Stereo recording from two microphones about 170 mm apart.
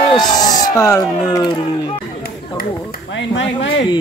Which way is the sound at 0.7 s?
20° left (ahead or behind).